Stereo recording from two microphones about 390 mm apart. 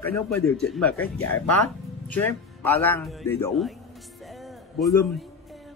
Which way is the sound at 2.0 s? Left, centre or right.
Centre.